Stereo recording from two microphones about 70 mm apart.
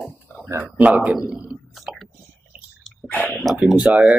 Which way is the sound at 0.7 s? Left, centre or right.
Right.